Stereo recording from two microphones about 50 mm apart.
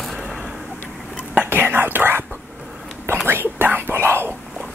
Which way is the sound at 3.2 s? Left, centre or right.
Right.